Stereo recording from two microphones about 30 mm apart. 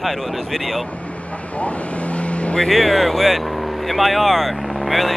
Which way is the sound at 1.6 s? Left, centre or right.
Left.